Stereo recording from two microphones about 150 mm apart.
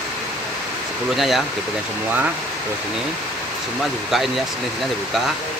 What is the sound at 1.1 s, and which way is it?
Speech, centre (ahead or behind).